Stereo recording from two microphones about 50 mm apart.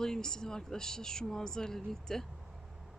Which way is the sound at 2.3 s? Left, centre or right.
Centre.